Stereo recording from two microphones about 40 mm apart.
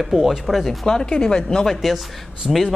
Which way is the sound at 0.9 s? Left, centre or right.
Centre.